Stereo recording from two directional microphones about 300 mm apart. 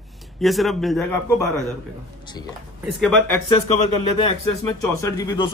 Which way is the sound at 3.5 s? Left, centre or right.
Left.